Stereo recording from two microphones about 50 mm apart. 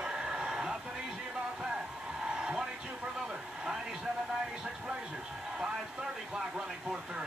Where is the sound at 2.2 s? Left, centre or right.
Centre.